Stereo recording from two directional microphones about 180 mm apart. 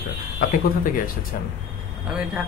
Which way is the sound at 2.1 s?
5° right (ahead or behind).